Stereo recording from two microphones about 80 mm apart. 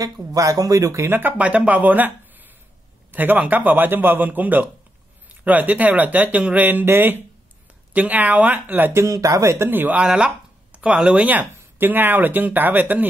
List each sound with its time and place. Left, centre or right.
0.0 s speech: right
1.1 s speech: right
9.0 s speech: right
9.7 s speech: right